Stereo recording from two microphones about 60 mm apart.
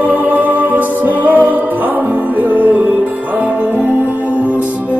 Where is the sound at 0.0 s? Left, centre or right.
Right.